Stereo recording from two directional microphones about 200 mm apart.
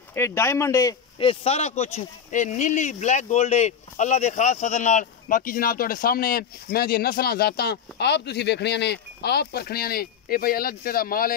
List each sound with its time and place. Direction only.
0.1 s speech: 15° left (ahead or behind)
1.2 s speech: 30° left (ahead or behind); by 11.3 s 45° left (ahead or behind)